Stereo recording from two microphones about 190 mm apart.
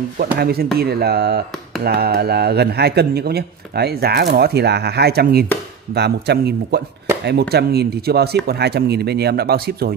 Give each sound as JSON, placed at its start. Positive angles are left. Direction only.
{"t": 0.2, "sound": "a man's voice", "side_deg": -55}